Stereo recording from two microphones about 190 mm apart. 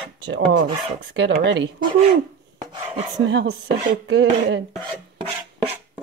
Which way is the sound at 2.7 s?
30° right (ahead or behind).